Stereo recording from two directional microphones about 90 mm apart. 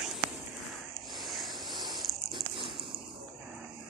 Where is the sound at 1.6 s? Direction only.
55° right (ahead or behind).